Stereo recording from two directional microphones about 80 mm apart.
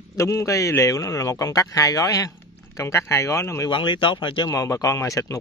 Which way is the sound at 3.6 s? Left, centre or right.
Left.